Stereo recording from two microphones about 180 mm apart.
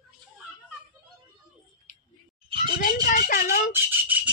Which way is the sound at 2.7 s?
55° left (ahead or behind).